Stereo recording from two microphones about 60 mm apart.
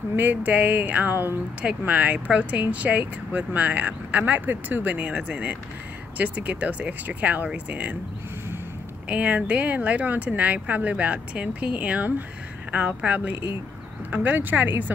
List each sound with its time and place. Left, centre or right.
0.1 s speech: right
1.6 s speech: right
9.1 s speech: right